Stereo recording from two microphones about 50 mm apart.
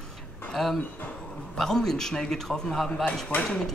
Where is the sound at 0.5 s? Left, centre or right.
Centre.